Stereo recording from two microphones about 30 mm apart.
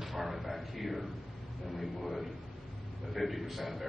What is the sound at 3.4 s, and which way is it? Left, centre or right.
Speech, centre.